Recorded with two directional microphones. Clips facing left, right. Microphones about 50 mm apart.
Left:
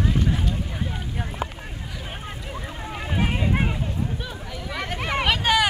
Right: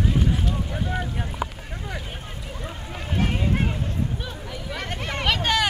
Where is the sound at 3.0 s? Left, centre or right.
Centre.